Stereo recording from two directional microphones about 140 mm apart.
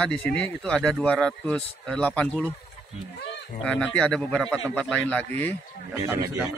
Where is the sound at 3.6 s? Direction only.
5° left (ahead or behind).